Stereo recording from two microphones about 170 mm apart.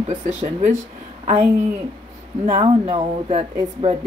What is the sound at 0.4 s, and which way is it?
A woman's voice, 40° right (ahead or behind).